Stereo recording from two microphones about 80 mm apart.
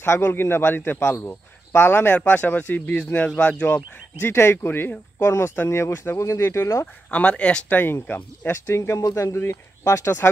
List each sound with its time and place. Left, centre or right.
0.0 s speech: left; by 3.6 s centre
3.6 s speech: left
7.1 s speech: centre
7.8 s speech: left